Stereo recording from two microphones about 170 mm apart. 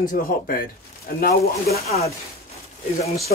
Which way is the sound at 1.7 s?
40° left (ahead or behind).